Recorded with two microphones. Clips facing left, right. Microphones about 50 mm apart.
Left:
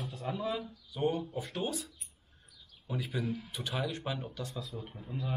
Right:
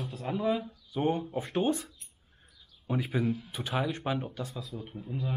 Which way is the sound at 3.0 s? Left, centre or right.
Centre.